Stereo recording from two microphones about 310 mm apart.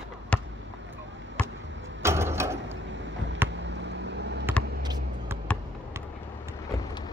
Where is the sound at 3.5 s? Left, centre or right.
Right.